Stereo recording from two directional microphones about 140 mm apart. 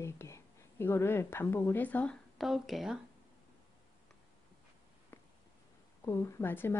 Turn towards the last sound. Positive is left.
turn(degrees=15)  # may be behind; listen again after turning